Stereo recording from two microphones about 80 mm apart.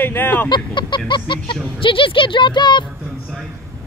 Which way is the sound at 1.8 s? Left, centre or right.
Left.